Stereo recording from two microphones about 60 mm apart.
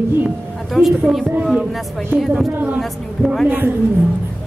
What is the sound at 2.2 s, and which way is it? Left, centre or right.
Speech, centre.